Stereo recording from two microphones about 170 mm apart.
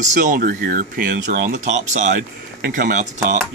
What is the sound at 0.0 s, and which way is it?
Speech, 50° right (ahead or behind).